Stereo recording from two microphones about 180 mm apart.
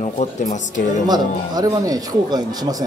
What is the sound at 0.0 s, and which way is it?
Speech, 40° left (ahead or behind).